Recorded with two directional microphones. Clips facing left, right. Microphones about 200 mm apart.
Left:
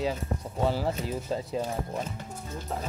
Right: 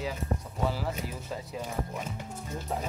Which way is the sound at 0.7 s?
30° left (ahead or behind).